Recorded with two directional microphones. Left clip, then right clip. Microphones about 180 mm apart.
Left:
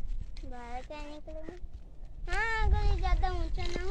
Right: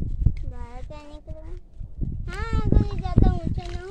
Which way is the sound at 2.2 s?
25° left (ahead or behind).